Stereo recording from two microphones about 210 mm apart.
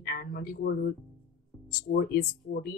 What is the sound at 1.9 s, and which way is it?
Speech, 45° left (ahead or behind).